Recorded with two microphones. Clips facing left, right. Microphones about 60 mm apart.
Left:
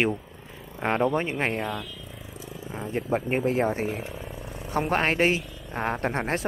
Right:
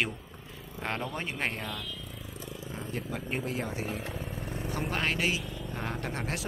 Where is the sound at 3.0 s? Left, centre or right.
Left.